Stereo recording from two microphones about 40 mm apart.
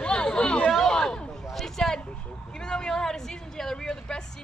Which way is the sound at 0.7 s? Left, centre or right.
Centre.